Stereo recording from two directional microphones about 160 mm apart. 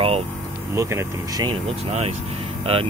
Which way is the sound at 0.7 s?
20° right (ahead or behind).